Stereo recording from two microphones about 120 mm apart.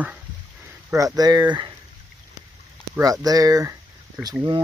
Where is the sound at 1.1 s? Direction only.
35° right (ahead or behind).